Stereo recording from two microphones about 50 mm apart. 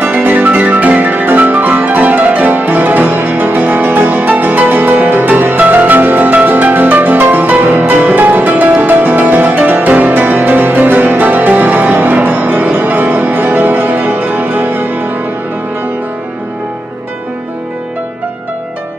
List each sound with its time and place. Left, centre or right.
0.0 s music: right